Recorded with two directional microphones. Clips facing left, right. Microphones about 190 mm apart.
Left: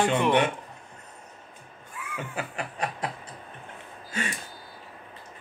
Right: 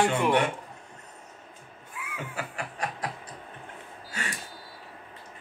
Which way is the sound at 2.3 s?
20° left (ahead or behind).